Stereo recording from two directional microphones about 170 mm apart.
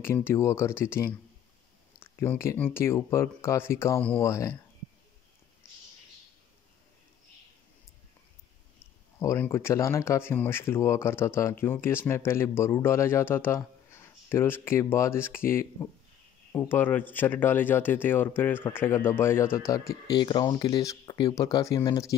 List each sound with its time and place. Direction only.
0.0 s speech: 15° left (ahead or behind)
9.2 s speech: 15° left (ahead or behind)